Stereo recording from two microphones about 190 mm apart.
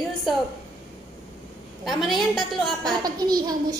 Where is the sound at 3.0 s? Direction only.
20° right (ahead or behind).